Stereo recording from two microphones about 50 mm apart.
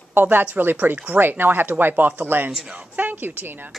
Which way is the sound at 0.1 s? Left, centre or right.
Right.